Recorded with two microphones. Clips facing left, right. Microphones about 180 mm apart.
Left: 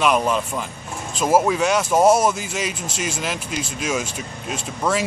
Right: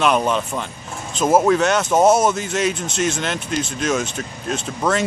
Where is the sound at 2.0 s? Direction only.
25° right (ahead or behind).